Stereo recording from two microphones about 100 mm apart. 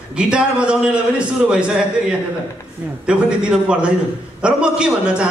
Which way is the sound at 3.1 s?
10° right (ahead or behind).